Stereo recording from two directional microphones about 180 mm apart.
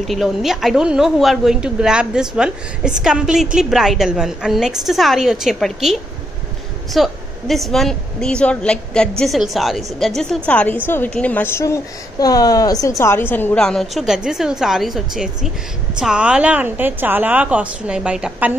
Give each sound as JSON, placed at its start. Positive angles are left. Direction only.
{"t": 0.0, "sound": "a woman's voice", "side_deg": 0}